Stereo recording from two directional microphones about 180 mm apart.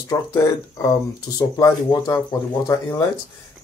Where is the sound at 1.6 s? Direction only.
20° left (ahead or behind).